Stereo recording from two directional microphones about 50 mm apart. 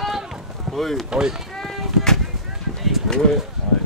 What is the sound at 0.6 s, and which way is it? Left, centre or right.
Boat, centre.